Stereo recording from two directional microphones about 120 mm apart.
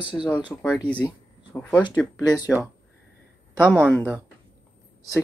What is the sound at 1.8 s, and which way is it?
Speech, 35° left (ahead or behind).